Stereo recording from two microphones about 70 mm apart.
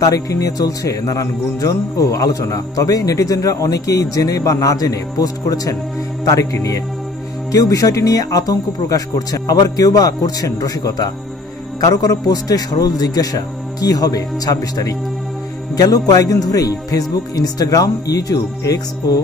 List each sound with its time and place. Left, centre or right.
0.0 s music: left